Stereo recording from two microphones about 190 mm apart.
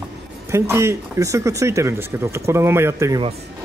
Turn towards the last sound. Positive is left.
turn(degrees=-15)  # may be behind; listen again after turning